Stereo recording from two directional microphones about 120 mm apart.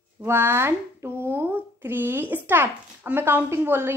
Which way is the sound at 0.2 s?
20° right (ahead or behind).